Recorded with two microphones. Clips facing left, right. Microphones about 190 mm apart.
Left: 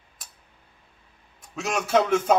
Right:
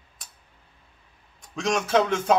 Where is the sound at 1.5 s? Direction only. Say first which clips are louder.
Even; 5° left (ahead or behind).